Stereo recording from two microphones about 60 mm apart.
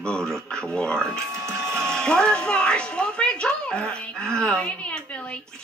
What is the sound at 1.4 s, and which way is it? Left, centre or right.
Printer, right.